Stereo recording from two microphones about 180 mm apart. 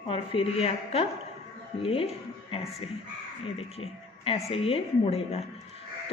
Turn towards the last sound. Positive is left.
turn(degrees=35)  # may be behind; listen again after turning